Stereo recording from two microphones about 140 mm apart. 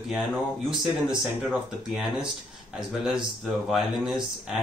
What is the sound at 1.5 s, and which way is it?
Speech, 5° right (ahead or behind).